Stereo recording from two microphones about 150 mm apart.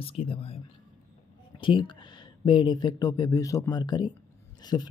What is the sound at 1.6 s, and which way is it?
Speech, 35° left (ahead or behind).